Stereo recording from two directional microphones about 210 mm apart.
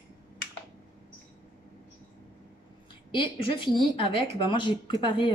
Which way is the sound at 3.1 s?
25° left (ahead or behind).